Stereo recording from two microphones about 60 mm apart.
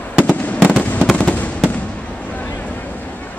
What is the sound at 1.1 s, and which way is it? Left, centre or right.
Fireworks, left.